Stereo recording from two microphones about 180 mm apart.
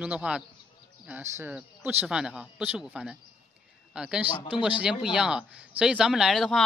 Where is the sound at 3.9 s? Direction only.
5° right (ahead or behind).